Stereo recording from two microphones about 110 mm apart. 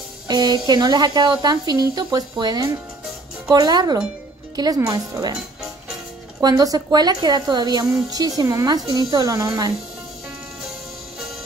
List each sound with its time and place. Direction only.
0.3 s a woman's voice: 40° right (ahead or behind)
6.4 s a woman's voice: 35° right (ahead or behind)